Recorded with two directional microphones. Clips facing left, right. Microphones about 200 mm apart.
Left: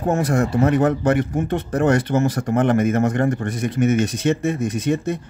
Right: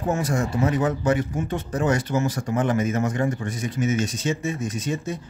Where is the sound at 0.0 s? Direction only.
55° left (ahead or behind).